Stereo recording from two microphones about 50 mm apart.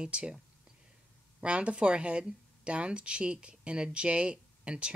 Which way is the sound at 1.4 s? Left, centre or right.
Right.